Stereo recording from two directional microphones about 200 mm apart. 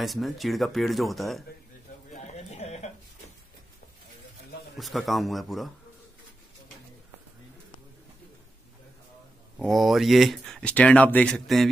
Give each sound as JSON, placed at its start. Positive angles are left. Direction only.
{"t": 0.0, "sound": "speech", "side_deg": 0}
{"t": 2.1, "sound": "a sound", "side_deg": 35}
{"t": 4.7, "sound": "speech", "side_deg": 0}
{"t": 9.6, "sound": "speech", "side_deg": 0}